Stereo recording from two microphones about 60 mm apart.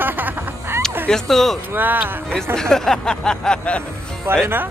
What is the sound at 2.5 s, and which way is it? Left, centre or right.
Speech, centre.